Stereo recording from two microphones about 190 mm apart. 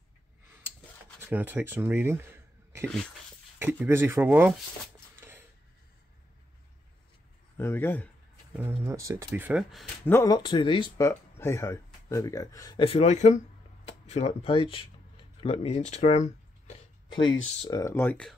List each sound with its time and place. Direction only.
1.2 s speech: 10° right (ahead or behind)
3.8 s speech: 10° right (ahead or behind)
7.5 s speech: 10° left (ahead or behind)
8.8 s speech: 15° right (ahead or behind)
10.0 s speech: 15° left (ahead or behind); by 16.7 s 35° left (ahead or behind)
17.1 s speech: 25° left (ahead or behind); by 18.3 s 10° left (ahead or behind)